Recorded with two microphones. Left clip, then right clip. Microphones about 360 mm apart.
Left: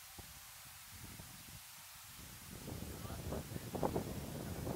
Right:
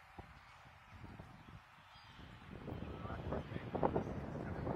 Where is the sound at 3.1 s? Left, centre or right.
Centre.